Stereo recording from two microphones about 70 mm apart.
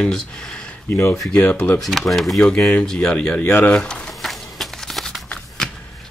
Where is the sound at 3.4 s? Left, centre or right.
Left.